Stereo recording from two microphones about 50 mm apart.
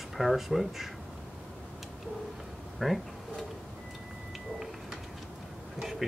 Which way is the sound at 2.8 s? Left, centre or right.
Centre.